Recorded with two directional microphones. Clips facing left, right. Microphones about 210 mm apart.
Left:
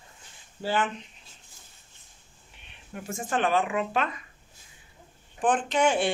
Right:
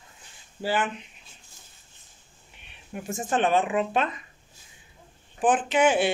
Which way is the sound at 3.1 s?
20° right (ahead or behind).